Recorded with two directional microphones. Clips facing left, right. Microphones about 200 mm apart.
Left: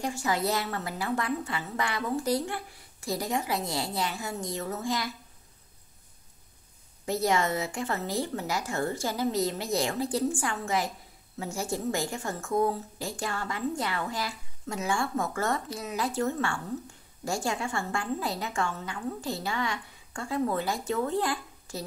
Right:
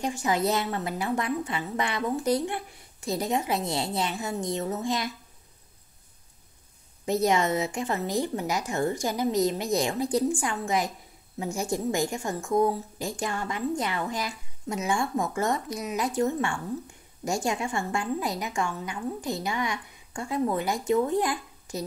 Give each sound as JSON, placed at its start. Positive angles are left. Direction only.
{"t": 0.0, "sound": "a woman's voice", "side_deg": -20}
{"t": 7.1, "sound": "a woman's voice", "side_deg": -20}